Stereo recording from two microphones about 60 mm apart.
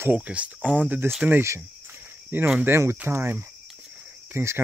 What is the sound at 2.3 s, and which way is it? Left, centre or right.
Speech, right.